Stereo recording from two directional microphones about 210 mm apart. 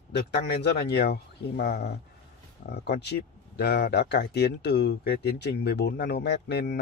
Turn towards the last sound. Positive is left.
turn(degrees=55)  # may be behind; listen again after turning